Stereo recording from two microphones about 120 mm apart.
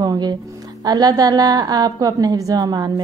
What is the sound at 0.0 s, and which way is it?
Music, 35° right (ahead or behind).